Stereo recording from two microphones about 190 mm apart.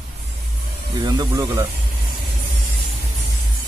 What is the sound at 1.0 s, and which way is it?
Speech, 20° right (ahead or behind).